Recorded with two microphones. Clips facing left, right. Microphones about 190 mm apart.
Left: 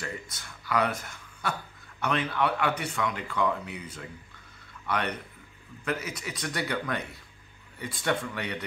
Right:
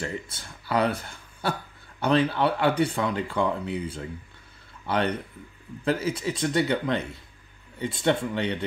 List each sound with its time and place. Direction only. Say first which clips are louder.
0.0 s speech: right 5 dB; 30° right (ahead or behind)